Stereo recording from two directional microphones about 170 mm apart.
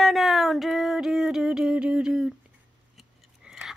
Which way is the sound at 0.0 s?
Centre (ahead or behind).